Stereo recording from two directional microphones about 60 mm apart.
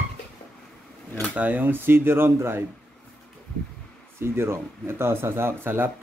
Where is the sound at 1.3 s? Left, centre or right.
Right.